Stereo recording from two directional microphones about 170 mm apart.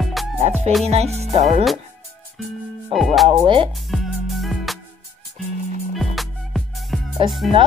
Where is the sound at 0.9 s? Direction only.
40° right (ahead or behind).